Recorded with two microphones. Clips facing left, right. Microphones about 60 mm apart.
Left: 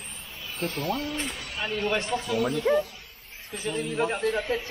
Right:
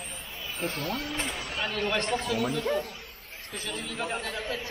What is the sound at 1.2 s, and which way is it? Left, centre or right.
Speech, right.